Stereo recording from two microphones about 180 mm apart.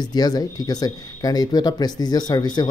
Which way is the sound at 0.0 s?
20° left (ahead or behind).